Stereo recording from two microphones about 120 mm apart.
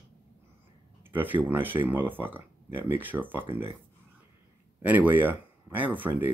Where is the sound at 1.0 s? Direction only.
15° right (ahead or behind).